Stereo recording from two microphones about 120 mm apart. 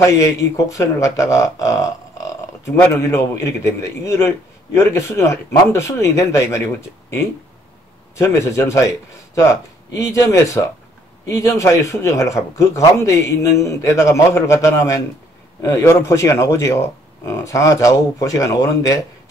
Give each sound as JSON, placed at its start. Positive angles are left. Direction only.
{"t": 0.0, "sound": "speech", "side_deg": 25}
{"t": 8.2, "sound": "speech", "side_deg": 25}